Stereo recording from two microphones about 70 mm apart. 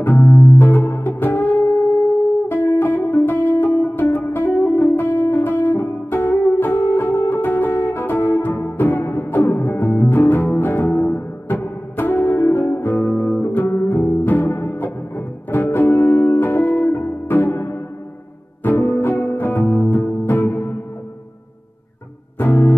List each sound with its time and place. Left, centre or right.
0.0 s music: left
2.4 s music: left
13.4 s music: left
22.4 s music: left